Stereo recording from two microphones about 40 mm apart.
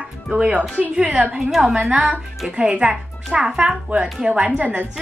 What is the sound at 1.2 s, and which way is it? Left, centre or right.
Speech, right.